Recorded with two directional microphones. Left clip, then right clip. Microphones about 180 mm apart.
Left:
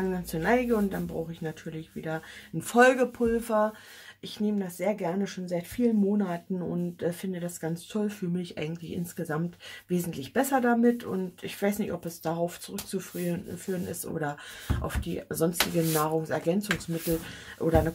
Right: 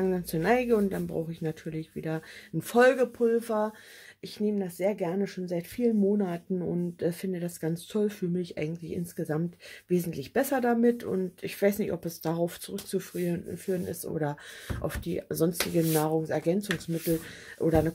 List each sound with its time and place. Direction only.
0.0 s speech: 35° right (ahead or behind)